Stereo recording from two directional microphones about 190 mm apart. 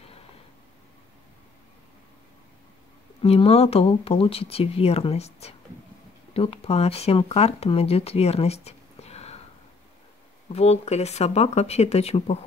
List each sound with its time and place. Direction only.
3.2 s speech: 30° left (ahead or behind)
10.5 s speech: 35° left (ahead or behind)